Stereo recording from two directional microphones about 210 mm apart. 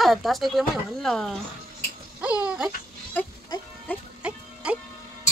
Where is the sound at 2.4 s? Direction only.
5° right (ahead or behind).